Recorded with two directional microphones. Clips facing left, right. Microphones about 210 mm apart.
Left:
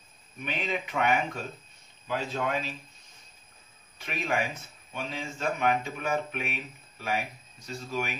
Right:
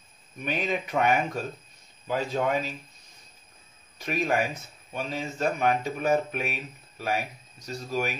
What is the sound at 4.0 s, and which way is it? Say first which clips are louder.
Speech: right 4 dB; 40° right (ahead or behind).